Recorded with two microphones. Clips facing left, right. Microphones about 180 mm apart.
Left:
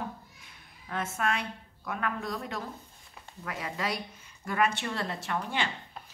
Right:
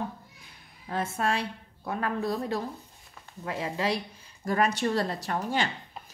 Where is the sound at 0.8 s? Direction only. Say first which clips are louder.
Right 3 dB; 35° right (ahead or behind).